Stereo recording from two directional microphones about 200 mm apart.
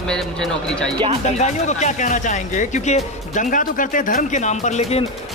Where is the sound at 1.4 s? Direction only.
35° left (ahead or behind).